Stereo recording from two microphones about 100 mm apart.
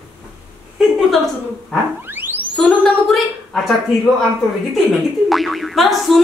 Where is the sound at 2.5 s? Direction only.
10° left (ahead or behind).